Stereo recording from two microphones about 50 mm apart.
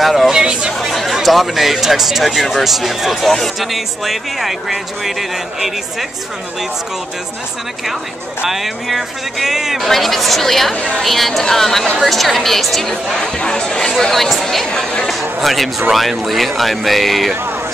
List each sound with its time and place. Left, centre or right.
0.0 s speech: centre
0.3 s speech: centre
0.7 s speech: centre
8.5 s speech: centre
10.7 s a woman's voice: left
11.0 s speech: centre
15.4 s speech: centre